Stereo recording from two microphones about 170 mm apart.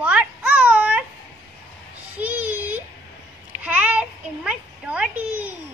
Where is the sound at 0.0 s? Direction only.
5° right (ahead or behind).